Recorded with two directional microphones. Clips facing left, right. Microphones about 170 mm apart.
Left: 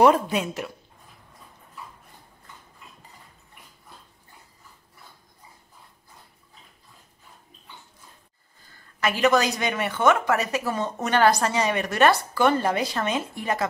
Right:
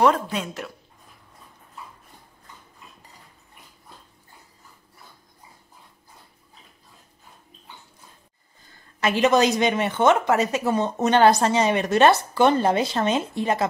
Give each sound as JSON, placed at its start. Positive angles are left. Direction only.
{"t": 0.0, "sound": "a woman's voice", "side_deg": 10}
{"t": 9.0, "sound": "speech", "side_deg": -20}